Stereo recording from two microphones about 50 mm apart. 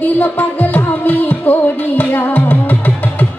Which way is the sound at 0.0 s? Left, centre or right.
Left.